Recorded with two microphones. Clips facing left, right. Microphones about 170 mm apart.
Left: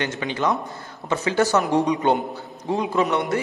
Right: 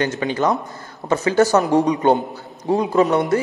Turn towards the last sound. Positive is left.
turn(degrees=-40)  # may be behind; listen again after turning